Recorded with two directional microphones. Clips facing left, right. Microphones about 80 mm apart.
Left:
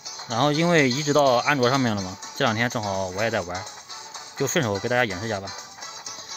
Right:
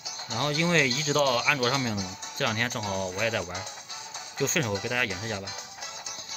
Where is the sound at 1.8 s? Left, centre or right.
Left.